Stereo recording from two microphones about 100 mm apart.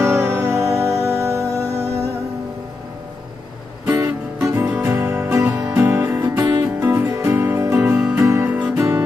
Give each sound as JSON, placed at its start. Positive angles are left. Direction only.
{"t": 0.0, "sound": "music", "side_deg": -25}
{"t": 3.8, "sound": "music", "side_deg": -25}
{"t": 4.6, "sound": "music", "side_deg": -15}
{"t": 5.1, "sound": "music", "side_deg": -30}